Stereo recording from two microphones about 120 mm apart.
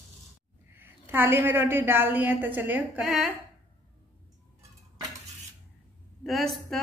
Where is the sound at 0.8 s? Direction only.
20° right (ahead or behind).